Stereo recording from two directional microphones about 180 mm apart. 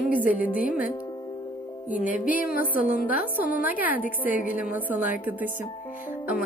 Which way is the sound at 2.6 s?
50° left (ahead or behind).